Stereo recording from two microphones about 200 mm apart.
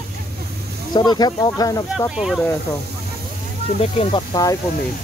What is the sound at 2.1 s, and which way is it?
Speech, centre (ahead or behind).